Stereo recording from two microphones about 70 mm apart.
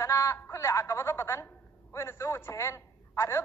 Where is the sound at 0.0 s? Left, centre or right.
Left.